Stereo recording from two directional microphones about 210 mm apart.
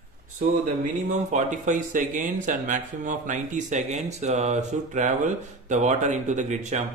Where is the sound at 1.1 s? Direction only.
35° right (ahead or behind).